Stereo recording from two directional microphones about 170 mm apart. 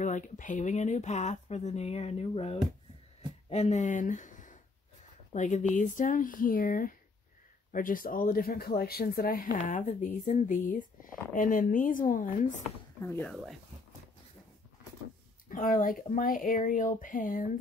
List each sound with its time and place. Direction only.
0.0 s speech: 45° left (ahead or behind)
13.0 s speech: 10° left (ahead or behind)
15.5 s speech: 55° left (ahead or behind)